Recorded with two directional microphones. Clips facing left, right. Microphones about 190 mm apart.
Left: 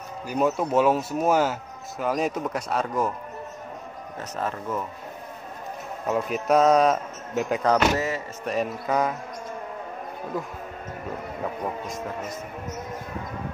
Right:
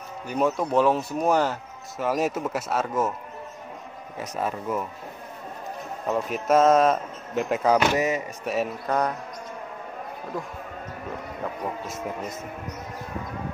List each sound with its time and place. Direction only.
0.6 s speech: 5° left (ahead or behind)
4.2 s speech: 10° right (ahead or behind)
6.0 s speech: centre (ahead or behind)
7.9 s speech: 20° right (ahead or behind)
8.5 s speech: centre (ahead or behind)